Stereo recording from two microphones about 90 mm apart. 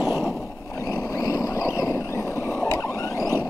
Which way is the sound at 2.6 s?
40° left (ahead or behind).